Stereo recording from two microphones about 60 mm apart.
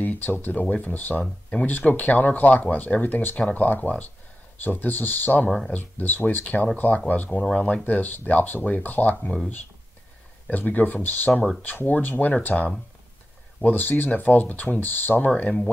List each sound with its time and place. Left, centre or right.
0.0 s speech: left
10.5 s speech: left